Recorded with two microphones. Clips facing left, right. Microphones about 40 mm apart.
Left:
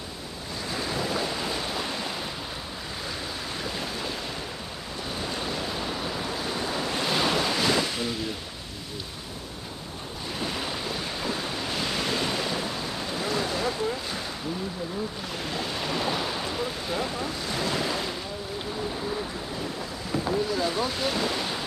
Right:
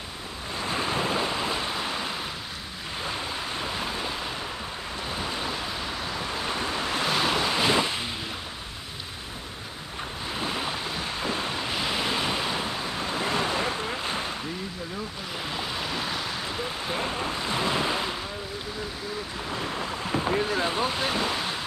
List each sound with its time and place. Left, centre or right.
0.6 s waves: right; by 2.1 s centre
3.6 s a sound: right
5.2 s waves: centre
6.3 s waves: right
6.9 s waves: centre
7.5 s ocean: right
10.3 s waves: centre
11.3 s waves: right
15.5 s a sound: centre
16.8 s ocean: right
19.5 s boat: right
20.9 s ocean: centre